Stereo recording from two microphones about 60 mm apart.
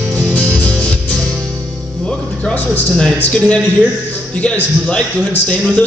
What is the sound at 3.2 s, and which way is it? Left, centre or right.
A man's voice, left.